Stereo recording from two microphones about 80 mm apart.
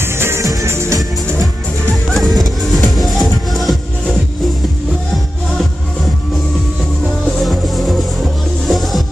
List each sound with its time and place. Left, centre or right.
0.0 s music: right
2.0 s music: centre
7.3 s music: centre